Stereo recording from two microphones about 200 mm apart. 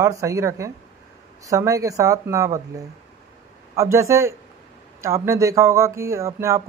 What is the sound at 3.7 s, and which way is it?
Speech, 15° right (ahead or behind).